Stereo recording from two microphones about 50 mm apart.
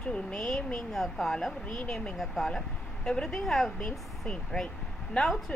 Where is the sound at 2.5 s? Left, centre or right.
Centre.